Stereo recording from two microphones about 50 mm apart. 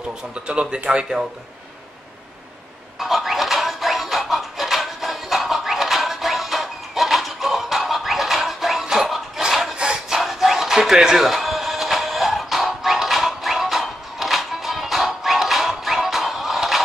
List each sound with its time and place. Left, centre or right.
0.3 s speech: right
3.0 s music: centre
9.8 s music: centre
10.1 s music: centre